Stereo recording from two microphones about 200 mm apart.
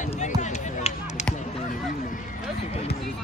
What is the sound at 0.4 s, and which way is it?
Music, 35° left (ahead or behind).